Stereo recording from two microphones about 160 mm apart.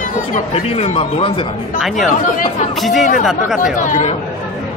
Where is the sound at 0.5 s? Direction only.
40° left (ahead or behind).